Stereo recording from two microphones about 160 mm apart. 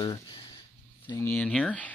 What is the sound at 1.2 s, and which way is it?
Speech, 10° left (ahead or behind).